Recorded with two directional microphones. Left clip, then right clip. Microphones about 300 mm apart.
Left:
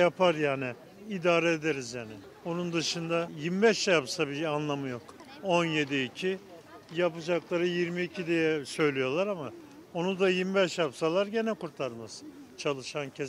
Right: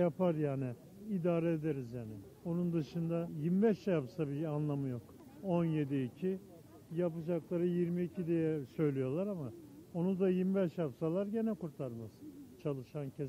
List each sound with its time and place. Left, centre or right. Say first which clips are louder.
0.0 s a man's voice: left 9 dB; centre